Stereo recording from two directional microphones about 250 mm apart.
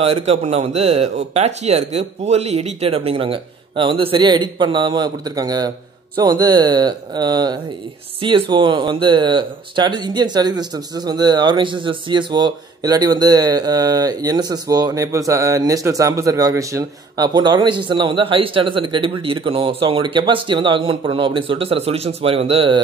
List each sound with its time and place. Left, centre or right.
0.0 s speech: right